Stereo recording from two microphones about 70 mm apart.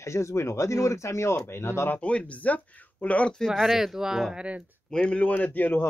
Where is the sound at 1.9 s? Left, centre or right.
Centre.